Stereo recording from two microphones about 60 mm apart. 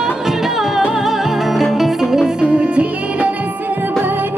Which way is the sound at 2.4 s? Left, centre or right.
Centre.